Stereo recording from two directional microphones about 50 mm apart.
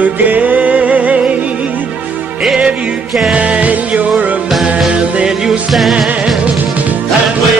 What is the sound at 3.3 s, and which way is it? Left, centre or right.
Music, right.